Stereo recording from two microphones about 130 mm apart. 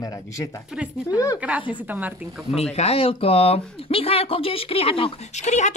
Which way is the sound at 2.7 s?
50° left (ahead or behind).